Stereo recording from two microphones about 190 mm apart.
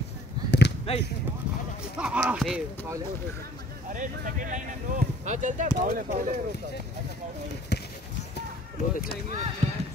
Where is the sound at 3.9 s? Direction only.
45° right (ahead or behind).